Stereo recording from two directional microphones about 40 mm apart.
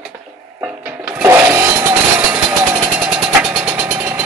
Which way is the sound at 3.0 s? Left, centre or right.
Right.